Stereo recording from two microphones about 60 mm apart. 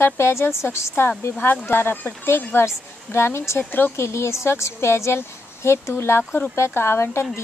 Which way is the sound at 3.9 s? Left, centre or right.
Left.